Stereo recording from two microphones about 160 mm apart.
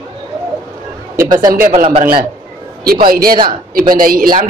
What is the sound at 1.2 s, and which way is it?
Speech, 25° right (ahead or behind).